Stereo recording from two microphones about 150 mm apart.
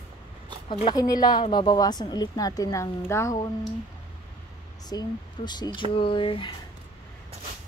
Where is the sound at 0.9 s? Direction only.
25° left (ahead or behind).